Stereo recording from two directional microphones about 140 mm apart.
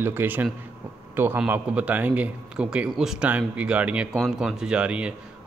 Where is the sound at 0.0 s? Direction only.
15° right (ahead or behind).